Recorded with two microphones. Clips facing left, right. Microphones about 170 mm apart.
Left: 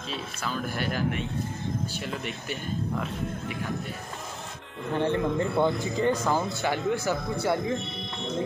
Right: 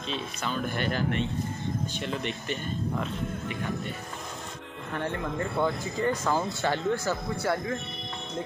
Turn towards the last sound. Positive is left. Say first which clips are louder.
# left 2 dB
turn(degrees=20)  # may be behind; listen again after turning